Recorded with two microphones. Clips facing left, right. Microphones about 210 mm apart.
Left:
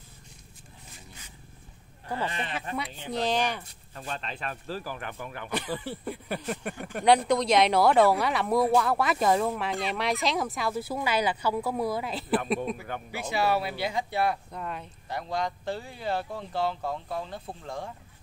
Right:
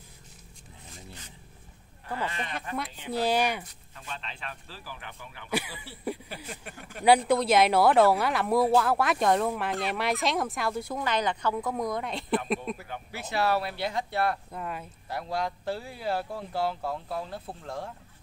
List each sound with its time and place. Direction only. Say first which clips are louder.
2.1 s speech: left 1 dB; 30° left (ahead or behind)
2.7 s speech: even; 5° right (ahead or behind)
3.9 s speech: left 5 dB; 40° left (ahead or behind)
6.2 s a sound: left 9 dB; 60° left (ahead or behind)
7.1 s speech: even; 5° right (ahead or behind)